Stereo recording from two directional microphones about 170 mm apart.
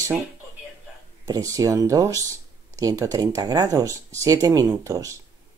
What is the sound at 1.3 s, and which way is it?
Speech, 20° right (ahead or behind).